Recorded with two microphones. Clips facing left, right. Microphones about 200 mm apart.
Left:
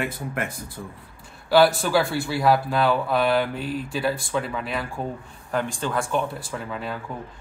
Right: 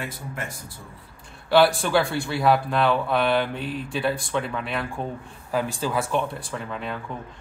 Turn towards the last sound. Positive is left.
turn(degrees=5)  # may be behind; listen again after turning